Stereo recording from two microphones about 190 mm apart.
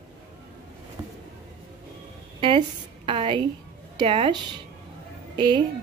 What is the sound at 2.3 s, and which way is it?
A woman's voice, 25° right (ahead or behind).